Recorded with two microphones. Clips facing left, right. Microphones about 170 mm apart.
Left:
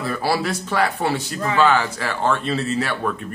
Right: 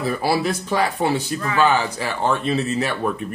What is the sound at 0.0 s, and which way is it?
Speech, 15° right (ahead or behind).